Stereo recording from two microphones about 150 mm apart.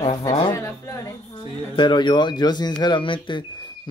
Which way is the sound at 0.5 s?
20° left (ahead or behind).